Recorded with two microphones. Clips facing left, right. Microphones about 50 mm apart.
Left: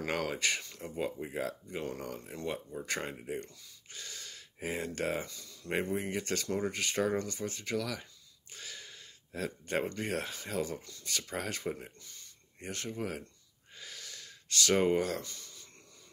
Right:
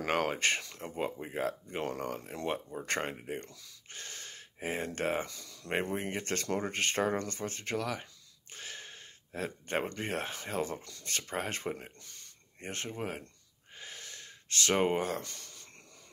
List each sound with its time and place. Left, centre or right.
0.1 s speech: right
1.9 s speech: right
2.8 s speech: right
3.9 s speech: right
5.2 s speech: right
5.7 s speech: right
8.5 s a sound: right
9.9 s speech: right
12.0 s a sound: right
12.5 s speech: right
13.7 s gasp: right
15.2 s a sound: right